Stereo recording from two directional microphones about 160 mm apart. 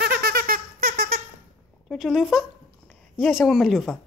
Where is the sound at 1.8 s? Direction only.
Centre (ahead or behind).